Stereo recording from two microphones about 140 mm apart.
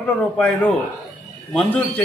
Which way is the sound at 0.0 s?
10° left (ahead or behind).